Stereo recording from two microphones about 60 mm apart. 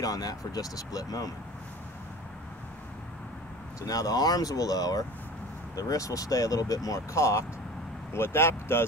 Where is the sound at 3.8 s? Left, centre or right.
Left.